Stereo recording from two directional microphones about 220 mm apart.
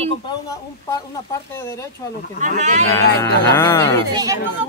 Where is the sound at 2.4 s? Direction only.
35° right (ahead or behind).